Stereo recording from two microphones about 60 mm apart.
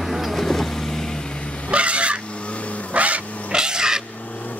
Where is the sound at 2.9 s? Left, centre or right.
Right.